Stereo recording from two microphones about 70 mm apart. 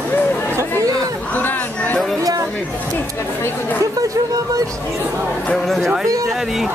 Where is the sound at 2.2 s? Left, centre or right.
Right.